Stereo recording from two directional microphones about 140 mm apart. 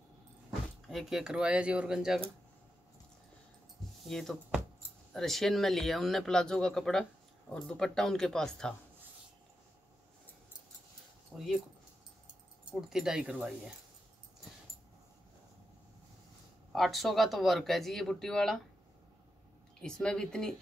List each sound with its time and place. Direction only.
0.8 s a man's voice: centre (ahead or behind)
4.1 s a man's voice: centre (ahead or behind)
11.3 s a man's voice: centre (ahead or behind)
12.9 s a man's voice: 5° right (ahead or behind)
16.7 s a man's voice: centre (ahead or behind)
19.8 s a man's voice: 5° left (ahead or behind)